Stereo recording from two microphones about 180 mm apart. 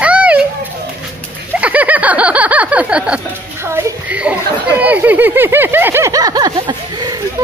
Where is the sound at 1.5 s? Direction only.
10° right (ahead or behind).